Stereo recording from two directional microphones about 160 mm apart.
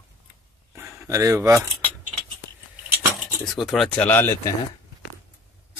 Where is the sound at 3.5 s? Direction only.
Centre (ahead or behind).